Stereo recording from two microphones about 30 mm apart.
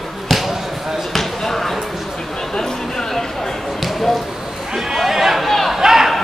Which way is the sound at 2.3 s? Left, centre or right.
Left.